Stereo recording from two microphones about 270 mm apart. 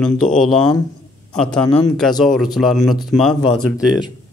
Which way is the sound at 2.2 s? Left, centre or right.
Centre.